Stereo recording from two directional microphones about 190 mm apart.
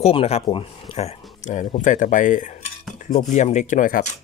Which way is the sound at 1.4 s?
40° left (ahead or behind).